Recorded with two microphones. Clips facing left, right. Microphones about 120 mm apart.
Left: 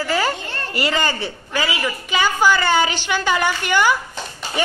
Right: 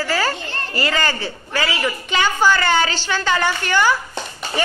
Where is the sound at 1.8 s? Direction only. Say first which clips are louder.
Right 1 dB; 5° left (ahead or behind).